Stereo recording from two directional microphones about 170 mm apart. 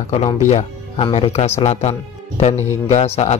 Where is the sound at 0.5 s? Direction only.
40° left (ahead or behind).